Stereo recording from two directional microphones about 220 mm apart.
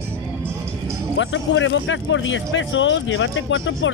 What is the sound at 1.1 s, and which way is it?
Speech, 60° left (ahead or behind).